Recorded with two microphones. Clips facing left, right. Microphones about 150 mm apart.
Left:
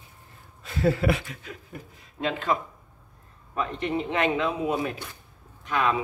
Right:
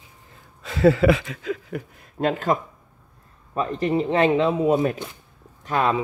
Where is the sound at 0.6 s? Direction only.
90° right; by 2.0 s 75° right (ahead or behind).